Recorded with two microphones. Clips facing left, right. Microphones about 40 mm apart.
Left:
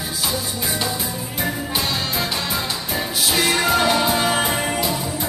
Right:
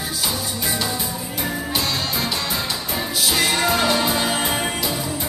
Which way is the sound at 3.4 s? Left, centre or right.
Centre.